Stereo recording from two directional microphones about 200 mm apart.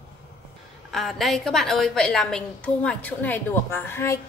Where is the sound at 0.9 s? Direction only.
Centre (ahead or behind).